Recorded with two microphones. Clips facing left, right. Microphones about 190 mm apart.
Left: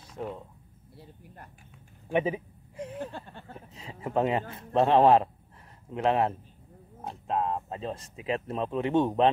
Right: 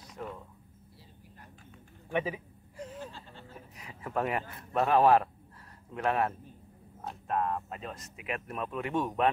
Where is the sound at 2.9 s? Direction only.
55° left (ahead or behind).